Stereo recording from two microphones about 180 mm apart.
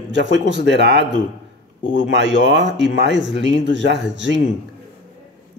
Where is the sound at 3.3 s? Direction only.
90° right.